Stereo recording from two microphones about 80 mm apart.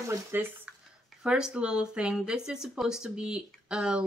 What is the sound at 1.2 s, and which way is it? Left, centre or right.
Speech, centre.